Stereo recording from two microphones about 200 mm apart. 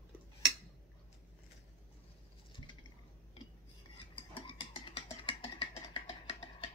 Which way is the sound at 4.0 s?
25° left (ahead or behind).